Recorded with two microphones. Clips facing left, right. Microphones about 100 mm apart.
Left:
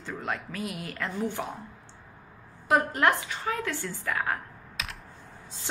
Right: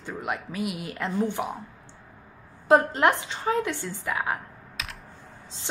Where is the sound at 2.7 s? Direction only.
30° right (ahead or behind).